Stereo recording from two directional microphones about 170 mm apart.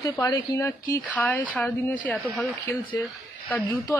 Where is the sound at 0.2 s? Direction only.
20° left (ahead or behind).